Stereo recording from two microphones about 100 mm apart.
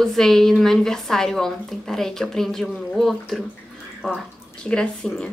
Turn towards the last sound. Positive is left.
turn(degrees=10)  # may be behind; listen again after turning